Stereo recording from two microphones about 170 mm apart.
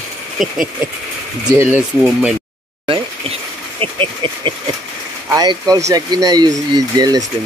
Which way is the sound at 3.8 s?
30° right (ahead or behind).